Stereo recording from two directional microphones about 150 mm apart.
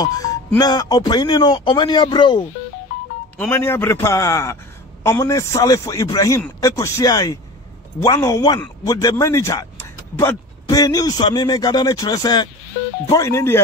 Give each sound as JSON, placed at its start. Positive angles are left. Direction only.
{"t": 0.0, "sound": "a man's voice", "side_deg": 25}
{"t": 3.3, "sound": "a man's voice", "side_deg": 15}
{"t": 9.8, "sound": "a sound", "side_deg": 15}
{"t": 10.7, "sound": "a man's voice", "side_deg": 25}